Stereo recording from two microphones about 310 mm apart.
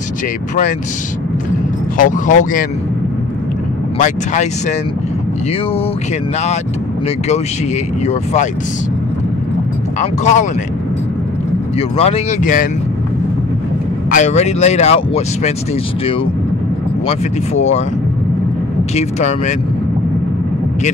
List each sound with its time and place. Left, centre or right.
2.0 s speech: left
4.0 s speech: left
8.0 s speech: left
9.9 s speech: left
12.0 s speech: left
14.1 s speech: left
17.1 s speech: left
18.9 s speech: left